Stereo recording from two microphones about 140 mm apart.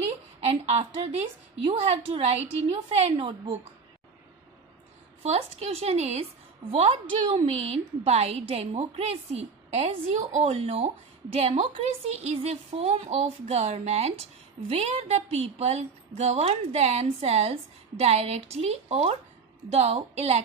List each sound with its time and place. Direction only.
0.5 s a woman's voice: 45° right (ahead or behind)
5.2 s a woman's voice: 45° right (ahead or behind)